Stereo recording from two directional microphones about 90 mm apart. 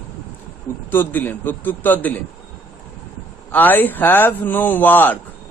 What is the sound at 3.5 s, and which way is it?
A man's voice, 20° left (ahead or behind).